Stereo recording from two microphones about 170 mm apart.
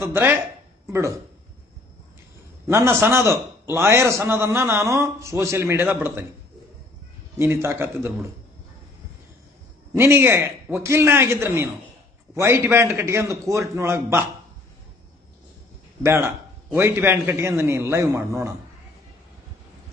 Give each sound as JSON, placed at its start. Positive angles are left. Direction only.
{"t": 0.0, "sound": "a man's voice", "side_deg": -15}
{"t": 2.7, "sound": "a man's voice", "side_deg": -15}
{"t": 7.3, "sound": "a man's voice", "side_deg": -15}
{"t": 9.9, "sound": "a man's voice", "side_deg": -15}
{"t": 16.0, "sound": "a man's voice", "side_deg": -15}